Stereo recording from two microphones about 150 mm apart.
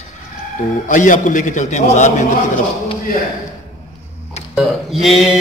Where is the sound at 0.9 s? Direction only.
60° left (ahead or behind).